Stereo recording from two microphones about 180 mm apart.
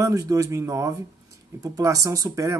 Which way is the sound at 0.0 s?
20° right (ahead or behind).